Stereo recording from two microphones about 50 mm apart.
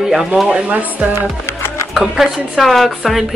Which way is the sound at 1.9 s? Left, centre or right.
Centre.